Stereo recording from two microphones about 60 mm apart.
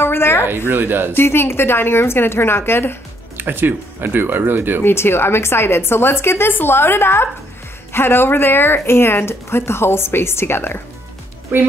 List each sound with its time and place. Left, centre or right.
0.0 s speech: left
0.7 s speech: right
1.1 s speech: left
3.3 s speech: right
4.8 s speech: left
11.5 s speech: right